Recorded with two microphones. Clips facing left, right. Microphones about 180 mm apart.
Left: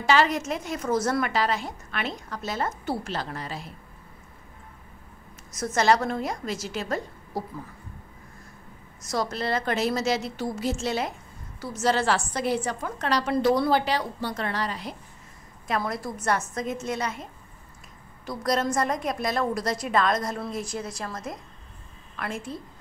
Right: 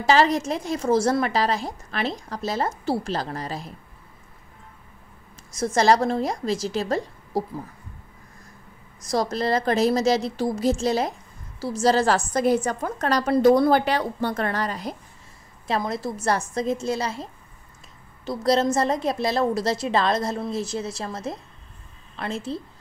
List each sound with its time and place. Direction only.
0.0 s a woman's voice: 35° right (ahead or behind)
5.5 s a woman's voice: 30° right (ahead or behind)
9.1 s a woman's voice: 35° right (ahead or behind)
15.8 s a woman's voice: 25° right (ahead or behind)